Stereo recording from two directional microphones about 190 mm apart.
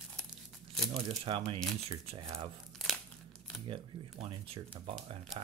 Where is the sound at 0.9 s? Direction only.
30° right (ahead or behind).